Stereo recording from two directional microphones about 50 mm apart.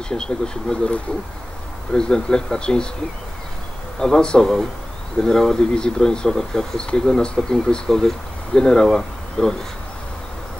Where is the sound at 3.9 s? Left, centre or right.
Centre.